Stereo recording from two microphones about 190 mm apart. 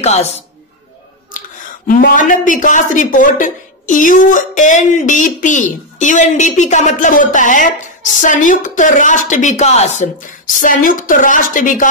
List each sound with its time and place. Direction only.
0.0 s a woman's voice: 35° left (ahead or behind)
1.9 s a woman's voice: 45° left (ahead or behind)